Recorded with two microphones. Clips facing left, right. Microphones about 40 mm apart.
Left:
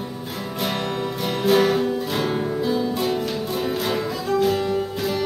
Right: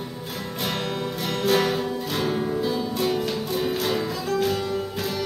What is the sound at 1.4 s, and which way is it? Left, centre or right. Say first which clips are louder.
Music: left 4 dB; centre.